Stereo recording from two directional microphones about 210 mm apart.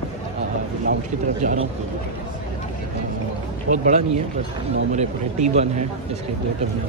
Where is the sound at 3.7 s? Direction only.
35° right (ahead or behind).